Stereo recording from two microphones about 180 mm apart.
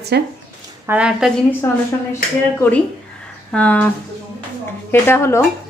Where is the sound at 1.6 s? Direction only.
15° left (ahead or behind).